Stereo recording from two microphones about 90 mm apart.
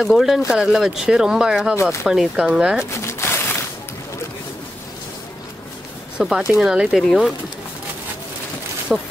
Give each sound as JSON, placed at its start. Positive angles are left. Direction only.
{"t": 0.0, "sound": "speech", "side_deg": 0}
{"t": 3.0, "sound": "a sound", "side_deg": 30}
{"t": 6.1, "sound": "speech", "side_deg": -10}
{"t": 8.9, "sound": "speech", "side_deg": -5}